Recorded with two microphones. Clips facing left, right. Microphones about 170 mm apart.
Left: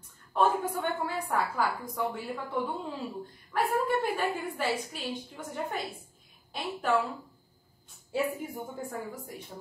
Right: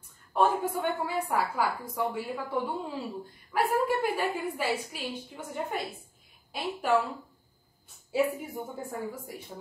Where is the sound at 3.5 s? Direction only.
10° right (ahead or behind).